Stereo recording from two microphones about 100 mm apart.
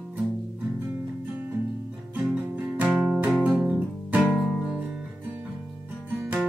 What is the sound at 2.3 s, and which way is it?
Music, 15° right (ahead or behind).